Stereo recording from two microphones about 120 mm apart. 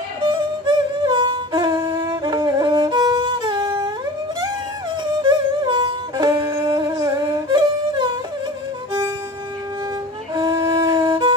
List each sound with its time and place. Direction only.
0.2 s music: 40° right (ahead or behind)
5.2 s music: 40° right (ahead or behind)
10.3 s music: 30° right (ahead or behind)